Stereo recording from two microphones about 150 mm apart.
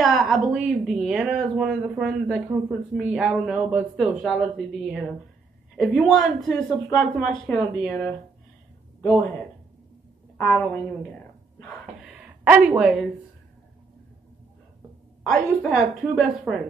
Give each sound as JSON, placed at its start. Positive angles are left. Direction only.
{"t": 0.0, "sound": "speech", "side_deg": 0}
{"t": 10.3, "sound": "a woman's voice", "side_deg": 15}
{"t": 11.6, "sound": "a sound", "side_deg": 0}
{"t": 15.3, "sound": "speech", "side_deg": 0}